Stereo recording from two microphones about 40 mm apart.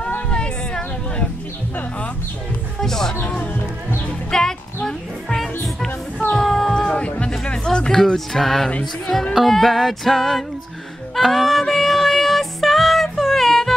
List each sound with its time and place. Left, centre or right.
0.3 s a sound: left
2.8 s speech: centre
4.3 s speech: centre
4.8 s music: centre
6.7 s a sound: centre
7.2 s music: left
7.9 s speech: centre
9.3 s music: centre